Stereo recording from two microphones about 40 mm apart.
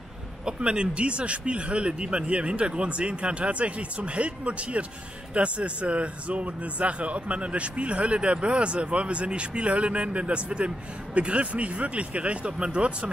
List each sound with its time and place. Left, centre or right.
0.5 s speech: right